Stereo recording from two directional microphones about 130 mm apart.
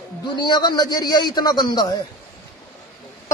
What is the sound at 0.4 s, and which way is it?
Speech, 35° left (ahead or behind).